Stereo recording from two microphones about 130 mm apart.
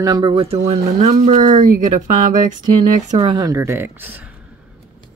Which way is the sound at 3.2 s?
35° right (ahead or behind).